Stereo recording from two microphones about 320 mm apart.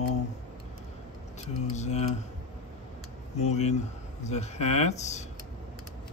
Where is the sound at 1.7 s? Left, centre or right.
Left.